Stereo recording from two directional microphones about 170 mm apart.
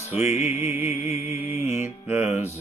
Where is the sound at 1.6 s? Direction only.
15° right (ahead or behind).